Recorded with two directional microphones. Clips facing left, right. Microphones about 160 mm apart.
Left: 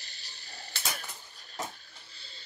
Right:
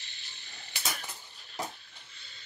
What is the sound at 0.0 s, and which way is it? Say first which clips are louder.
Mechanisms: left 1 dB; 40° left (ahead or behind).